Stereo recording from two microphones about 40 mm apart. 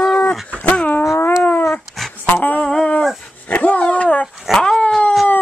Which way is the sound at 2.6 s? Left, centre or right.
Left.